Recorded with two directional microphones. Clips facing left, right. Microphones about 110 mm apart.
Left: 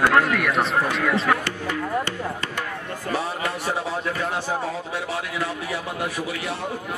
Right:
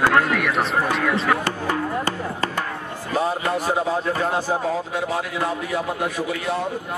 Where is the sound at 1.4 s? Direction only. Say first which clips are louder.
Right 4 dB; 40° right (ahead or behind).